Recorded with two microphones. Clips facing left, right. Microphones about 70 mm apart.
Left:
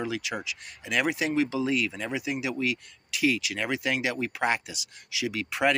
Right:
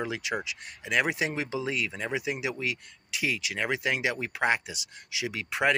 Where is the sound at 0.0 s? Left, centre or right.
Right.